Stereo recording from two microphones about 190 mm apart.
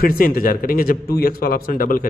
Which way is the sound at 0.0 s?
50° left (ahead or behind).